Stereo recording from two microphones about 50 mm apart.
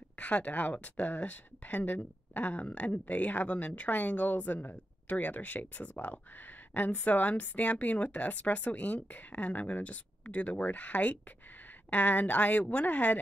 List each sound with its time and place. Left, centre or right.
0.2 s speech: left